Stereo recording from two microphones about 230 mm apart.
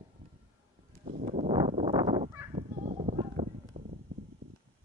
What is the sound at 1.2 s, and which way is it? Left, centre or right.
Fowl, right.